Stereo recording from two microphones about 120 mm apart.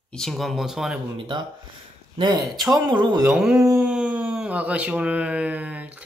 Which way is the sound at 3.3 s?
5° right (ahead or behind).